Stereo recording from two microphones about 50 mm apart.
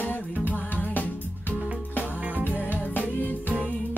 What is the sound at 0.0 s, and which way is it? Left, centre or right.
Music, left.